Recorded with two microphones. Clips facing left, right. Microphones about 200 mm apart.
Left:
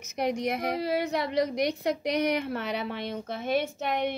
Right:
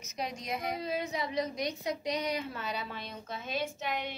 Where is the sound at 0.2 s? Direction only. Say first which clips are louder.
Left 8 dB; 65° left (ahead or behind).